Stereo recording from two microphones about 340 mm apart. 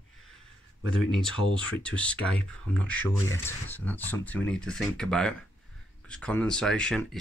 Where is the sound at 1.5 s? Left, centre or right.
Centre.